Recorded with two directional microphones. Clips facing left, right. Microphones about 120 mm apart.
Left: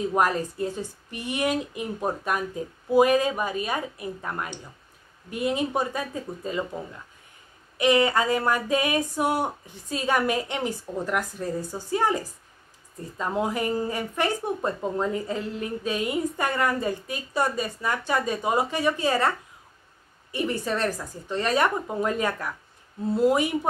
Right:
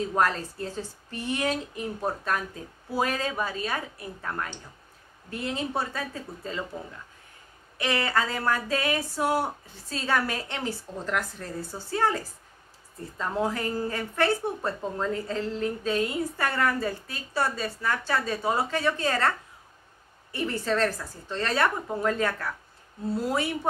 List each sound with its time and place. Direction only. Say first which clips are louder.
0.1 s a woman's voice: left 2 dB; 15° left (ahead or behind)
7.7 s a woman's voice: left 6 dB; 20° left (ahead or behind)